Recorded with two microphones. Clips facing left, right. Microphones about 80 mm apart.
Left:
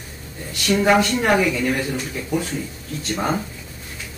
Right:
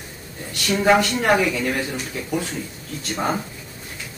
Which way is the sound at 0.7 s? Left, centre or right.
Centre.